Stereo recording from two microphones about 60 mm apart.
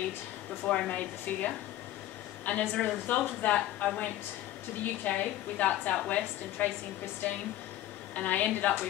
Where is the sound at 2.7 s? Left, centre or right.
Centre.